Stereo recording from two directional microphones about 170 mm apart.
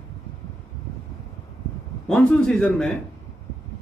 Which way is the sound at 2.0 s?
5° left (ahead or behind).